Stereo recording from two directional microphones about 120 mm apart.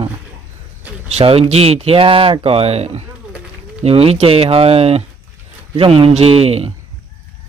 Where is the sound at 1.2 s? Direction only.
55° right (ahead or behind).